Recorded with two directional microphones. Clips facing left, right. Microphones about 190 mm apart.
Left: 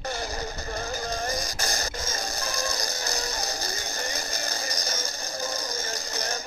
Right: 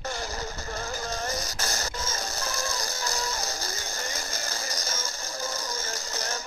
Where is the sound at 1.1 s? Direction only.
15° left (ahead or behind).